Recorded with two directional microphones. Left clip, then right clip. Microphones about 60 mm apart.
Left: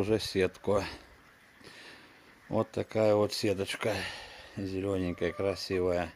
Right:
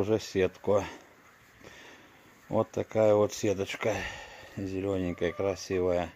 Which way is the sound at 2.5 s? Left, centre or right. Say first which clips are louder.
Right 2 dB; centre.